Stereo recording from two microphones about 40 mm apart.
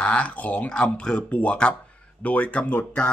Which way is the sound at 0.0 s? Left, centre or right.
Left.